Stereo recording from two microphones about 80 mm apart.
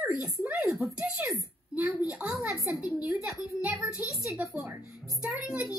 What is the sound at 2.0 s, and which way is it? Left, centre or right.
A child's voice, centre.